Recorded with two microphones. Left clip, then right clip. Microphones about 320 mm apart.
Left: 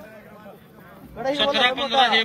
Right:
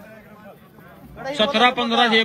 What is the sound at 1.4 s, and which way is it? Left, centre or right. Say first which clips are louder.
Speech: right 4 dB; centre.